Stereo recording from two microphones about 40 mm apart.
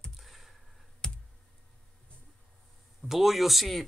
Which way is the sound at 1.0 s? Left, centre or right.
Centre.